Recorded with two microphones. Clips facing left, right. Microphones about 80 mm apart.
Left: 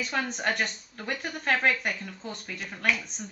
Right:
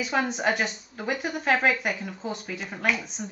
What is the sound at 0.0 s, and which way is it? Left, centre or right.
Speech, centre.